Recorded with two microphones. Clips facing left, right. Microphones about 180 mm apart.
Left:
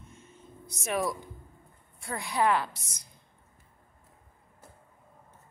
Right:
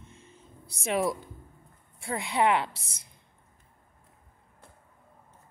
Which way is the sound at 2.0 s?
25° right (ahead or behind).